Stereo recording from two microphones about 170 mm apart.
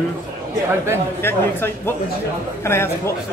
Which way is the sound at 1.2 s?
15° left (ahead or behind).